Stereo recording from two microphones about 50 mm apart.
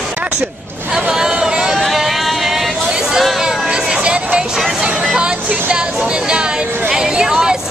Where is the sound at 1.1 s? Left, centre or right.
Centre.